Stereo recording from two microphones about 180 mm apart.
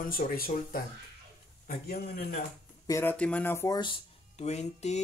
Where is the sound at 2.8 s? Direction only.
15° left (ahead or behind).